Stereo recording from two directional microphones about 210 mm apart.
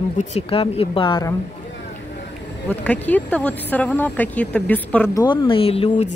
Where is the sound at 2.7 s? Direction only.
5° left (ahead or behind).